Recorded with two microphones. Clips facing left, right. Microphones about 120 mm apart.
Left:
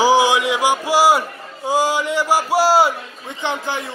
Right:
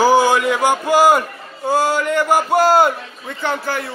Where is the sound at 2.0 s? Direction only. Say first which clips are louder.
Right 2 dB; 55° right (ahead or behind).